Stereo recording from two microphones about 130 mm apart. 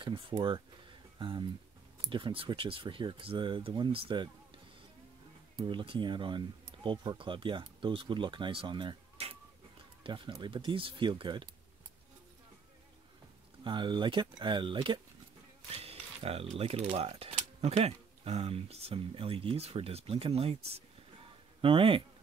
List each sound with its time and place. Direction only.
0.0 s a sound: 40° right (ahead or behind)
2.0 s speech: 40° right (ahead or behind)
5.6 s speech: 40° right (ahead or behind)
13.7 s speech: 35° right (ahead or behind)
15.7 s music: 45° right (ahead or behind)
16.5 s speech: 50° right (ahead or behind)